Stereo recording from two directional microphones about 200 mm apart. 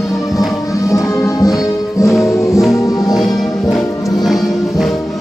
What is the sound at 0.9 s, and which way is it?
Music, 15° left (ahead or behind).